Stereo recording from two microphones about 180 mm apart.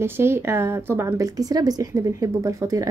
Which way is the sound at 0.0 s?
15° right (ahead or behind).